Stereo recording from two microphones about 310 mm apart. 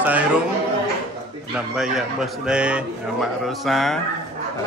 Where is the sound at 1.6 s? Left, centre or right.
Centre.